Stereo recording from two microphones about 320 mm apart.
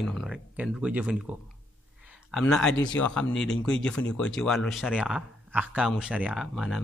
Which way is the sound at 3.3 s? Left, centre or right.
Left.